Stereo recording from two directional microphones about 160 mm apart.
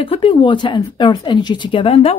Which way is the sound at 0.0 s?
35° left (ahead or behind).